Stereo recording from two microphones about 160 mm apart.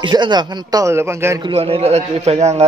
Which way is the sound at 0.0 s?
25° right (ahead or behind).